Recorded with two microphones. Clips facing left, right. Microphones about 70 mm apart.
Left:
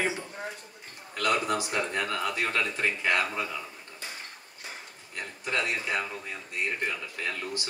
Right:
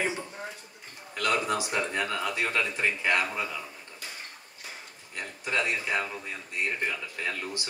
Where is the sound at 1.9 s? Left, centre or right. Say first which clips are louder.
Even; centre.